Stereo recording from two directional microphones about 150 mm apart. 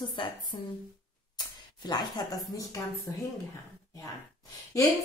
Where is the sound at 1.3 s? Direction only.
30° left (ahead or behind).